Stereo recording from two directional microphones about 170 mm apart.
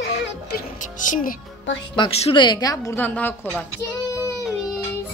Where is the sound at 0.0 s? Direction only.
90° left.